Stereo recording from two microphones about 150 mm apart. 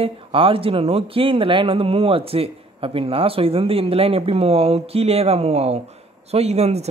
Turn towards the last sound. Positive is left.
turn(degrees=-45)  # may be behind; listen again after turning